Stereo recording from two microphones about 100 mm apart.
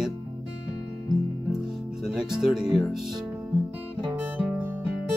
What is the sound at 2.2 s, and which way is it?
Speech, 5° right (ahead or behind).